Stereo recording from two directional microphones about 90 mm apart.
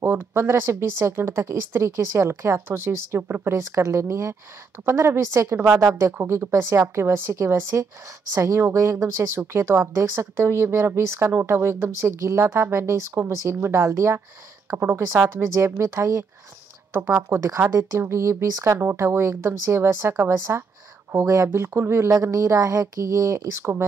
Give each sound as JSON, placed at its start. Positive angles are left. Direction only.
{"t": 0.0, "sound": "speech", "side_deg": -25}